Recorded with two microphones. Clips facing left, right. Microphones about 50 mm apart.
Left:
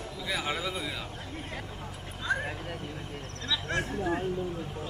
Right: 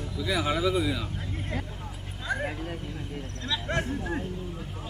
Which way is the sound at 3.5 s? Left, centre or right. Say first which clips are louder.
Right 2 dB; centre.